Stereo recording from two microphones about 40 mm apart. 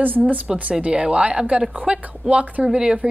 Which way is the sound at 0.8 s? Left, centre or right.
Right.